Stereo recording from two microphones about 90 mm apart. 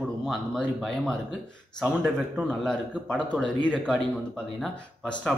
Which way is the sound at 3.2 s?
15° left (ahead or behind).